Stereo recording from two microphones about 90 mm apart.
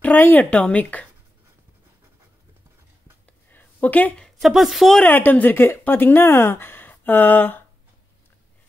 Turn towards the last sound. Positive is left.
turn(degrees=20)  # may be behind; listen again after turning